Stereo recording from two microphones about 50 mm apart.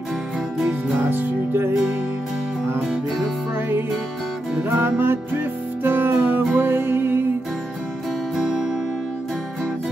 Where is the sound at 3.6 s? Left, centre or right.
Right.